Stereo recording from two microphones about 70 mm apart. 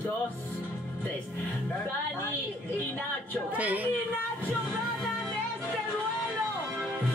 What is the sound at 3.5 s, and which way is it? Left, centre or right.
Speech, right.